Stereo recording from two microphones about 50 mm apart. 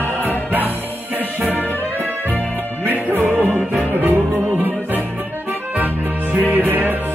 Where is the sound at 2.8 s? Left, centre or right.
Right.